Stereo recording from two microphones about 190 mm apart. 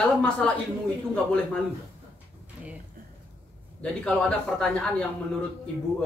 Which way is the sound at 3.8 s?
5° left (ahead or behind).